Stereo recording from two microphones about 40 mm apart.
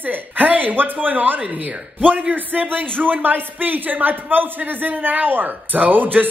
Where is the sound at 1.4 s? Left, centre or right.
Right.